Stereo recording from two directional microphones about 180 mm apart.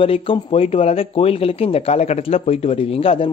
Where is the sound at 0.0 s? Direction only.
30° left (ahead or behind).